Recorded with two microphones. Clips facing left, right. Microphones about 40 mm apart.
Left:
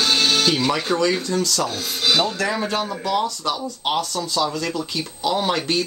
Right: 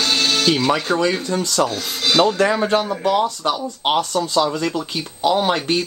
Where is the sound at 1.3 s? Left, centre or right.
Right.